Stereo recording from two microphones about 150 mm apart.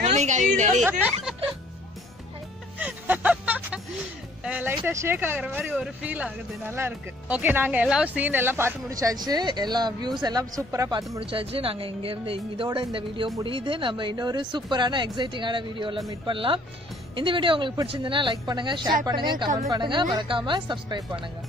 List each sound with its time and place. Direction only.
0.0 s a woman's voice: 50° right (ahead or behind)
2.8 s vehicle: 10° right (ahead or behind)
4.5 s speech: 10° right (ahead or behind)
11.1 s speech: 40° right (ahead or behind)